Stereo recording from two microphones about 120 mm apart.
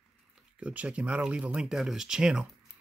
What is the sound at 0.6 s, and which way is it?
Speech, 10° right (ahead or behind).